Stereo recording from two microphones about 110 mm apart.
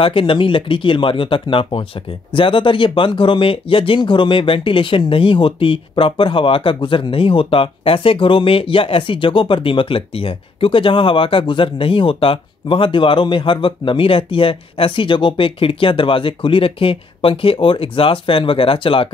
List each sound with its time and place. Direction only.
0.0 s speech: 50° left (ahead or behind)